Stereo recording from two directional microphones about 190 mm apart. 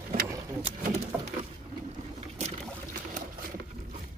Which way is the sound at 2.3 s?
35° right (ahead or behind).